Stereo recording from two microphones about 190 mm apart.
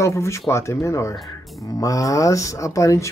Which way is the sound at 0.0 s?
15° left (ahead or behind).